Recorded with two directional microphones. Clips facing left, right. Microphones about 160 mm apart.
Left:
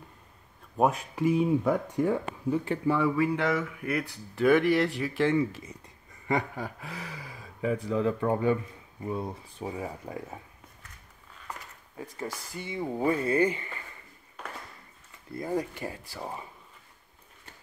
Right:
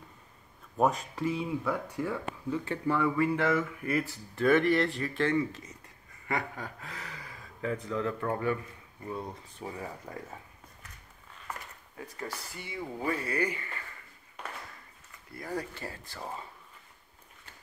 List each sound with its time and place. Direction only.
0.7 s speech: 5° left (ahead or behind)
3.9 s speech: centre (ahead or behind)
6.2 s speech: 15° left (ahead or behind)
12.3 s speech: 20° left (ahead or behind)
15.3 s speech: 20° left (ahead or behind)